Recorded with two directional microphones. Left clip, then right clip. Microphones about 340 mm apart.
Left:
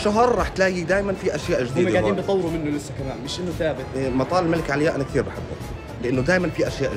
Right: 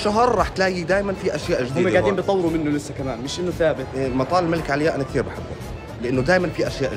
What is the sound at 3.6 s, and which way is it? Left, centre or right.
Speech, centre.